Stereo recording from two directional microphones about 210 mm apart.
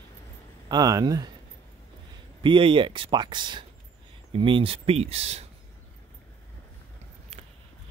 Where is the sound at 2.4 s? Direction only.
25° right (ahead or behind).